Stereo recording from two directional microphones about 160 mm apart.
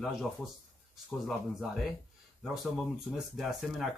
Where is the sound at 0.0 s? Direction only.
Centre (ahead or behind).